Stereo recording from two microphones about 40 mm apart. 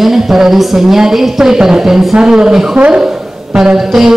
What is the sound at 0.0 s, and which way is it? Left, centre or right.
Speech, centre.